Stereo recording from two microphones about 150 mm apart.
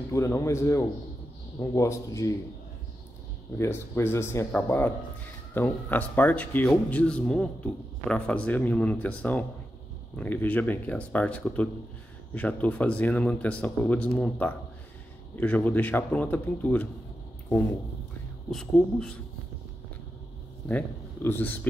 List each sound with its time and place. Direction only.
0.1 s a man's voice: 20° left (ahead or behind)
3.5 s speech: 15° left (ahead or behind)
18.5 s speech: 5° left (ahead or behind)
20.6 s speech: 15° left (ahead or behind)